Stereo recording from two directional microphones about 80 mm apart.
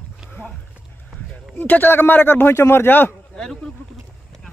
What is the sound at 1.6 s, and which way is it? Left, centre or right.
Speech, left.